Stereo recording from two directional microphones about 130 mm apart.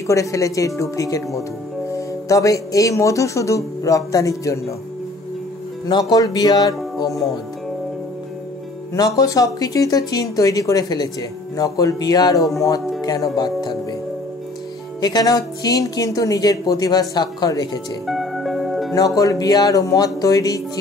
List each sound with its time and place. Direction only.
0.0 s speech: 25° left (ahead or behind)
5.9 s speech: 30° left (ahead or behind)
8.9 s speech: 30° left (ahead or behind)
15.0 s speech: 30° left (ahead or behind)
18.0 s music: centre (ahead or behind)
18.9 s speech: 25° left (ahead or behind)